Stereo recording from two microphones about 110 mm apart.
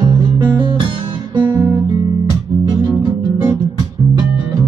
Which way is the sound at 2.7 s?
40° right (ahead or behind).